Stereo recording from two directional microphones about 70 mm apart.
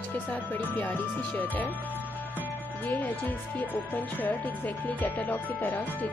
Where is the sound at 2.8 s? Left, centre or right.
Left.